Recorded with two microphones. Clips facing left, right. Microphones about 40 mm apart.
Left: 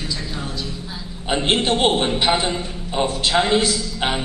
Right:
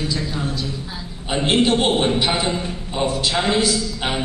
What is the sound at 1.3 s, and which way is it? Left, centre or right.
Speech, left.